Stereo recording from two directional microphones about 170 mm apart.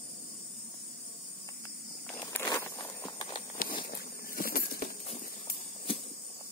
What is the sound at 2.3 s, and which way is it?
Walk, 15° left (ahead or behind).